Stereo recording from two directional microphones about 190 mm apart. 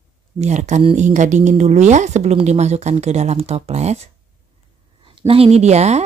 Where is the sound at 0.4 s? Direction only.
40° right (ahead or behind).